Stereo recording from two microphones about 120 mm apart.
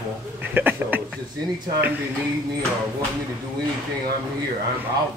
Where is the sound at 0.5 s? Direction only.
15° right (ahead or behind).